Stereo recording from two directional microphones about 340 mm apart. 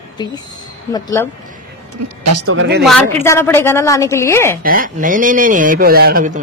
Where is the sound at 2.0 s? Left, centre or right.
Right.